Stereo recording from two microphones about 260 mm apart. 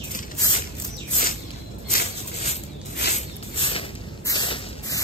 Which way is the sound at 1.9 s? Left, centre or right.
Left.